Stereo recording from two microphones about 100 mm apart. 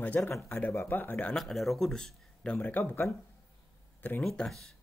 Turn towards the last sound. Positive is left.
turn(degrees=5)  # may be behind; listen again after turning